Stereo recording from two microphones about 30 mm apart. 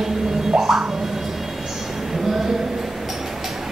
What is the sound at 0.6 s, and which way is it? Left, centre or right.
Music, centre.